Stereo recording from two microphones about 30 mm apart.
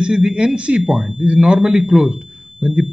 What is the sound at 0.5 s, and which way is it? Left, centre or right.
Speech, right.